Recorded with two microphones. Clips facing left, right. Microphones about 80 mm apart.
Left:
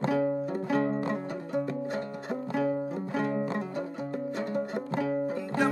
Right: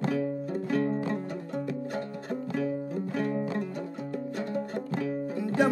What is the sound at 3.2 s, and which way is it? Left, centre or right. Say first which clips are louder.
Music: left 1 dB; centre.